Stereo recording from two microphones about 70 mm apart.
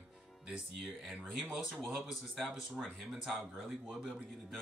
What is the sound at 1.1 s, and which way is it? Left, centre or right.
Speech, centre.